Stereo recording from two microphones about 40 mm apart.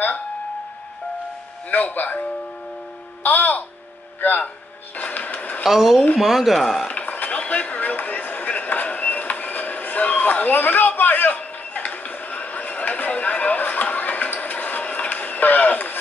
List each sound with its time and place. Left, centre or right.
1.7 s speech: left
3.3 s speech: left
5.7 s speech: centre
6.9 s a sound: left